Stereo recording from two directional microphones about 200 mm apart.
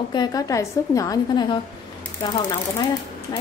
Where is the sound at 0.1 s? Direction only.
20° left (ahead or behind).